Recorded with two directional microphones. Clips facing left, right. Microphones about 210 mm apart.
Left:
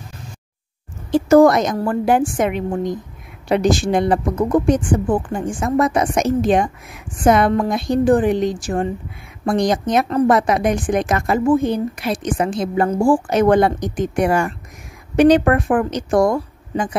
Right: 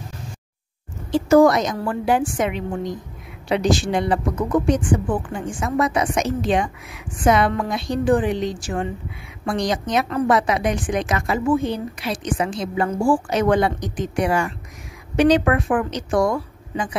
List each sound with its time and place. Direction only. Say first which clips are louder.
1.1 s speech: left 3 dB; 50° left (ahead or behind)